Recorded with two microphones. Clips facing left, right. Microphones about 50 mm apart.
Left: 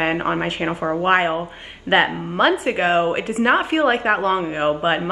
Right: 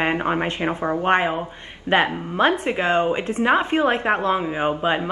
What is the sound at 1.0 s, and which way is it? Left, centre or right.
A woman's voice, centre.